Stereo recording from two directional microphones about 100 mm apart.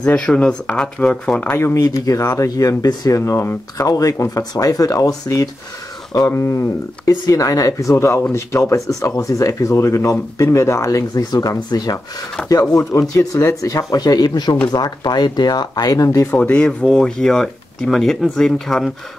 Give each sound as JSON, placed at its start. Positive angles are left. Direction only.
{"t": 0.0, "sound": "speech", "side_deg": 10}
{"t": 1.4, "sound": "speech", "side_deg": 25}
{"t": 3.2, "sound": "speech", "side_deg": 25}
{"t": 16.3, "sound": "speech", "side_deg": 15}